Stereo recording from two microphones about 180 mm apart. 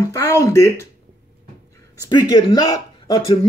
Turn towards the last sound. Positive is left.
turn(degrees=25)  # may be behind; listen again after turning